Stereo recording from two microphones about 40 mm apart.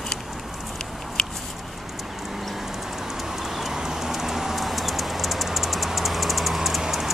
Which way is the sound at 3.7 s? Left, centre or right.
Centre.